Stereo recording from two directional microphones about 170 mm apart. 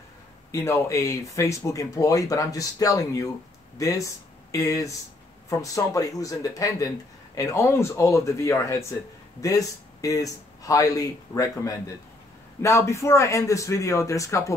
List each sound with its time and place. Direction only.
0.5 s a man's voice: 15° left (ahead or behind)